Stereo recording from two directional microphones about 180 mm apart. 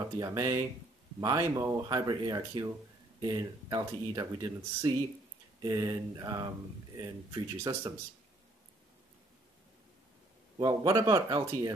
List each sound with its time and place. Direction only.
0.2 s speech: 20° right (ahead or behind)
10.6 s speech: 20° right (ahead or behind)